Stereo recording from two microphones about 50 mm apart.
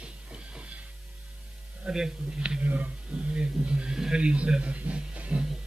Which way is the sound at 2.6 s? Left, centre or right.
Right.